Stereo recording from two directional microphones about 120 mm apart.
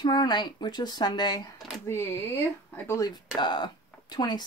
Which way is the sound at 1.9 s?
20° left (ahead or behind).